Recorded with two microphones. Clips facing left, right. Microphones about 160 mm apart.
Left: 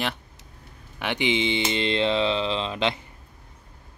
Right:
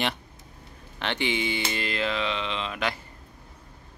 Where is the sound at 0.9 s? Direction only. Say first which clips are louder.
Left 3 dB; 15° left (ahead or behind).